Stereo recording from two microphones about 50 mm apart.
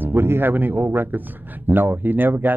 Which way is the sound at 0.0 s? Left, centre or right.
Right.